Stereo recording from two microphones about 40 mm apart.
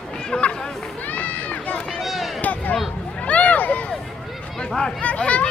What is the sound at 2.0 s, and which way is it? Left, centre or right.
Run, centre.